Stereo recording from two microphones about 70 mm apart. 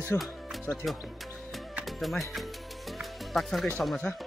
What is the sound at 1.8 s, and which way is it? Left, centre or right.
Music, centre.